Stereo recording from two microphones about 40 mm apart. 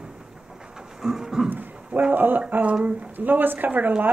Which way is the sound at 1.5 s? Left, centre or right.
Right.